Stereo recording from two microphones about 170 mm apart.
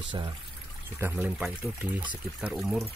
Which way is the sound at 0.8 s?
15° right (ahead or behind).